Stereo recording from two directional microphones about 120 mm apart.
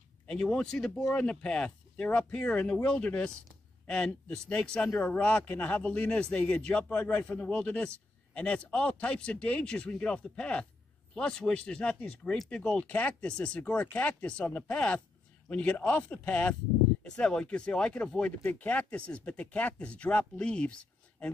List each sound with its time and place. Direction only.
0.3 s speech: 5° left (ahead or behind)